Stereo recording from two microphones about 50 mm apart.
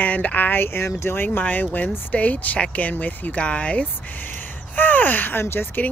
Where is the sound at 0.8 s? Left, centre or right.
Left.